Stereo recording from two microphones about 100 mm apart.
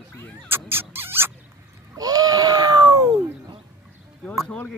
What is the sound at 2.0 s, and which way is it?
Baby cry, 40° right (ahead or behind).